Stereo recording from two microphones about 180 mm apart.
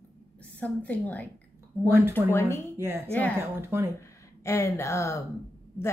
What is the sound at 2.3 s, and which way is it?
Speech, 15° left (ahead or behind).